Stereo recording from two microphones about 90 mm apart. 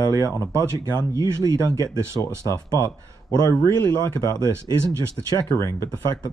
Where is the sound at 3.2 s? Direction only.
40° left (ahead or behind).